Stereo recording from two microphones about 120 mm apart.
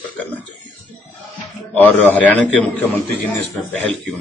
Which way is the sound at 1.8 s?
15° left (ahead or behind).